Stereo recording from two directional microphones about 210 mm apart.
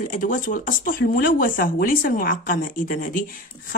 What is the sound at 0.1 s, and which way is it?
A woman's voice, 40° left (ahead or behind).